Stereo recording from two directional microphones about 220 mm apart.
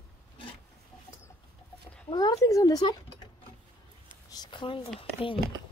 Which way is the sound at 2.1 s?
15° left (ahead or behind).